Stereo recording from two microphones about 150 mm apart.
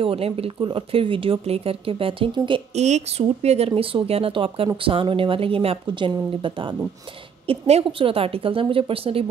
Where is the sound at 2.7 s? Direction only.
50° right (ahead or behind).